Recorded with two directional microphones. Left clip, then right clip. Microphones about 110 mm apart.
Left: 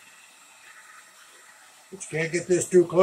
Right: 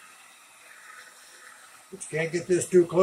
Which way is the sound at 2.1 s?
20° left (ahead or behind).